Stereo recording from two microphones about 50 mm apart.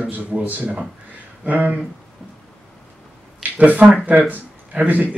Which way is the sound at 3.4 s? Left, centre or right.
Right.